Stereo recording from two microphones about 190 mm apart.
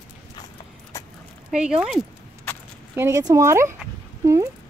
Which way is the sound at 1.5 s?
5° right (ahead or behind).